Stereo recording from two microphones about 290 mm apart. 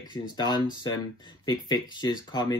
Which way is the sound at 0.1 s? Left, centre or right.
Centre.